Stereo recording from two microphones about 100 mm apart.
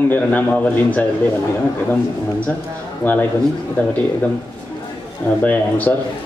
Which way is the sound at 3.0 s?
20° left (ahead or behind).